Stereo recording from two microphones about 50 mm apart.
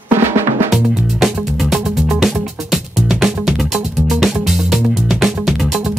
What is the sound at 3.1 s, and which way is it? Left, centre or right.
Music, centre.